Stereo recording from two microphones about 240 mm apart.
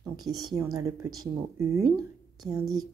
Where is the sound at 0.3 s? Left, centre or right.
Centre.